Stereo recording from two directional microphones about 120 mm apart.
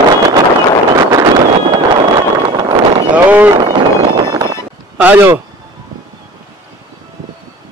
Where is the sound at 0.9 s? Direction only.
35° right (ahead or behind).